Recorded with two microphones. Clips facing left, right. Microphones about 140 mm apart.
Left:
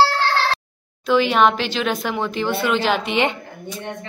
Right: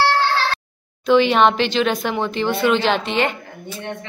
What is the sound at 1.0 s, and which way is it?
A woman's voice, 5° left (ahead or behind).